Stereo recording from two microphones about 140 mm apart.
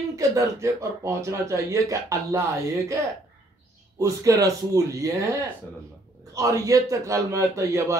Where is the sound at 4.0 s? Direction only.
25° right (ahead or behind).